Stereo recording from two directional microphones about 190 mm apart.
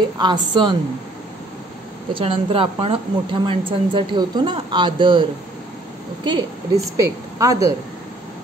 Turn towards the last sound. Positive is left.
turn(degrees=-15)  # may be behind; listen again after turning